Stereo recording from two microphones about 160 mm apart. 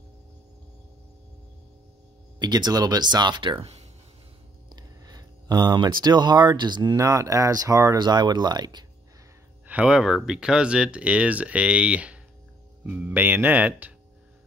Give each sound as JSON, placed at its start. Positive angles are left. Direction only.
{"t": 2.3, "sound": "speech", "side_deg": -25}
{"t": 4.7, "sound": "a sound", "side_deg": -25}
{"t": 6.0, "sound": "speech", "side_deg": -25}
{"t": 9.7, "sound": "speech", "side_deg": -5}